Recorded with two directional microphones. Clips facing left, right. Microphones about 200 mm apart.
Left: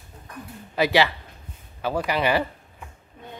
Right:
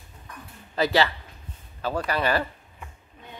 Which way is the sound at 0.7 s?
10° left (ahead or behind).